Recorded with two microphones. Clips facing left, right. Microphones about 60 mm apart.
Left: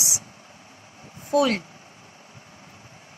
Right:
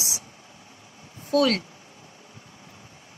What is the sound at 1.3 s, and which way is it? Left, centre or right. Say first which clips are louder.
Speech: even; centre.